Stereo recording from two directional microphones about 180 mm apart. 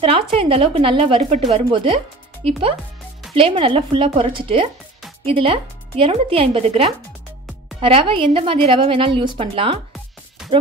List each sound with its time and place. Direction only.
0.0 s a woman's voice: 30° right (ahead or behind)